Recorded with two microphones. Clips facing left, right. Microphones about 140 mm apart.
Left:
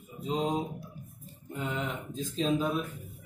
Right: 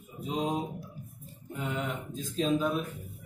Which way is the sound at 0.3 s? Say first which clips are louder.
Left 1 dB; 5° right (ahead or behind).